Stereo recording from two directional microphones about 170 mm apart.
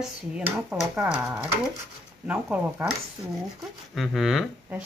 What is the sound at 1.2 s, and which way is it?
Speech, 15° right (ahead or behind).